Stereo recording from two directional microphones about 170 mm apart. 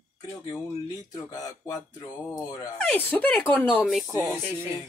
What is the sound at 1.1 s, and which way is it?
Speech, 20° left (ahead or behind).